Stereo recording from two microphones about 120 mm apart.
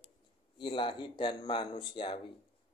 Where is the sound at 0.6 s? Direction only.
40° left (ahead or behind).